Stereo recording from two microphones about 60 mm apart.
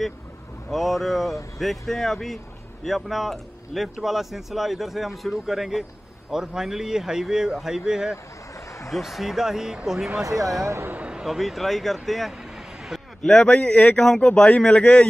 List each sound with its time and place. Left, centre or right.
0.7 s speech: centre
10.2 s speech: right
11.2 s speech: centre
13.2 s a man's voice: centre